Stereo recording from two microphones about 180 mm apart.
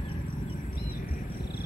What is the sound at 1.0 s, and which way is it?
Wild animals, 55° left (ahead or behind).